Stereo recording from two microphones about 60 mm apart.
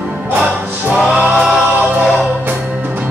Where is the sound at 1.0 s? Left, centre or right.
Centre.